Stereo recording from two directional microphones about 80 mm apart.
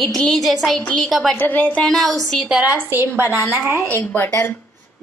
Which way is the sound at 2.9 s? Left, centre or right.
Right.